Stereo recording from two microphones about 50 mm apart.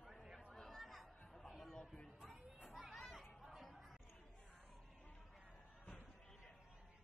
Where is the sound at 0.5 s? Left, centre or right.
Centre.